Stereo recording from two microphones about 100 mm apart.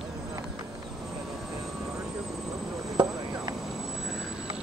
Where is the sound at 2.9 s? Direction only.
45° right (ahead or behind).